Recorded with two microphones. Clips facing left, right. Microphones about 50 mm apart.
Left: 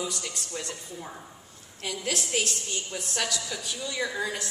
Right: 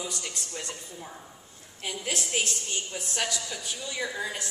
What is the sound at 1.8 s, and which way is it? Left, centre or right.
A woman's voice, centre.